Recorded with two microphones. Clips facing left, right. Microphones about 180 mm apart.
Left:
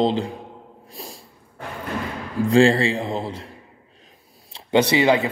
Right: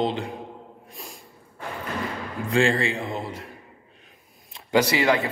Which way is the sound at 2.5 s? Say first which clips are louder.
Left 6 dB; 30° left (ahead or behind).